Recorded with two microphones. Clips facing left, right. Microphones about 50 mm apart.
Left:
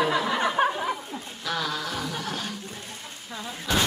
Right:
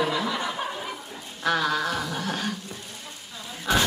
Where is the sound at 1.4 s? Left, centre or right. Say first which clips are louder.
Right 6 dB; right.